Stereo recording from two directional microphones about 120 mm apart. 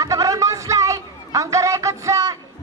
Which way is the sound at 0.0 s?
25° right (ahead or behind).